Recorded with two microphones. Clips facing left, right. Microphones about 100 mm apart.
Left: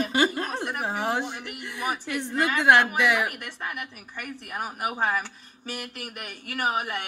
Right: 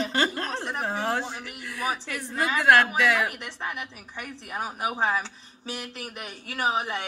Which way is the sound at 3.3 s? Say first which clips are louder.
Right 1 dB; 20° right (ahead or behind).